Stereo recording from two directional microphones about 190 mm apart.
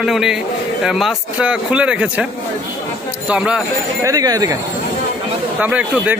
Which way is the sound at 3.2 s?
5° right (ahead or behind).